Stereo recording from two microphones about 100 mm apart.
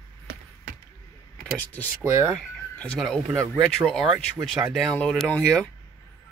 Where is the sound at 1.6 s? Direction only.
15° left (ahead or behind).